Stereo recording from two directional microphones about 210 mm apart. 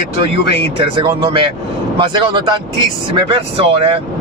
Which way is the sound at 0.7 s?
20° right (ahead or behind).